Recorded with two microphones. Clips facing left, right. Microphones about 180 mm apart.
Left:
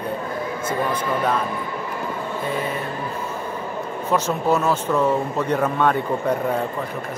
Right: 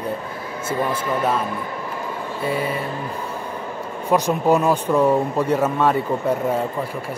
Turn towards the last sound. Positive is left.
turn(degrees=-5)  # may be behind; listen again after turning